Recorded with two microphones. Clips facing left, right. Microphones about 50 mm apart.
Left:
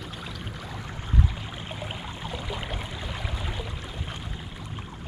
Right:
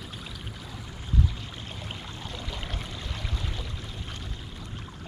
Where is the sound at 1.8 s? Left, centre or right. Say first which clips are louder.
Left 4 dB; centre.